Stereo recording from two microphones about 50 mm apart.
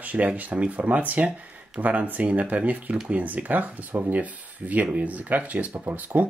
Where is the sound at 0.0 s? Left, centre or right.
Right.